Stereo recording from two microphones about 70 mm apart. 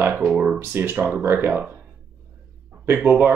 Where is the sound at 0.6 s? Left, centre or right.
Right.